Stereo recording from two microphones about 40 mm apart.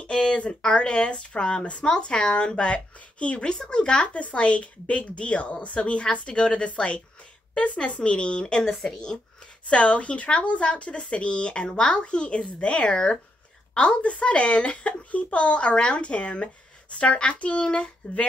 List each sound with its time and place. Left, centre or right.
0.0 s speech: left
8.6 s speech: centre
9.7 s speech: left
13.7 s speech: left